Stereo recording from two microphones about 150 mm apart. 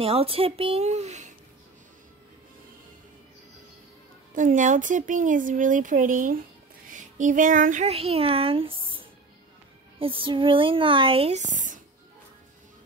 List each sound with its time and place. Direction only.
0.0 s speech: 40° right (ahead or behind)
4.4 s speech: 60° right (ahead or behind)
6.9 s child singing: 60° right (ahead or behind)
7.9 s speech: 40° right (ahead or behind); by 11.8 s 55° right (ahead or behind)